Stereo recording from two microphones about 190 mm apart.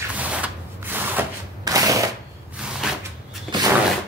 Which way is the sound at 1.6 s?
20° right (ahead or behind).